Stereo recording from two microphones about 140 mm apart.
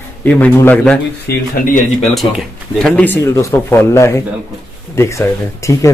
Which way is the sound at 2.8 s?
10° left (ahead or behind).